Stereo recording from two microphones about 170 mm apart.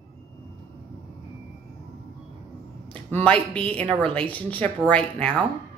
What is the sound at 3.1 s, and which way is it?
A woman's voice, 10° left (ahead or behind).